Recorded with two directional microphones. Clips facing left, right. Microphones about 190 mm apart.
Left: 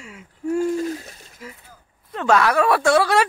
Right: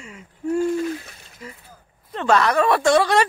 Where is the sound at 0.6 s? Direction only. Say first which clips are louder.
Right 1 dB; 40° left (ahead or behind).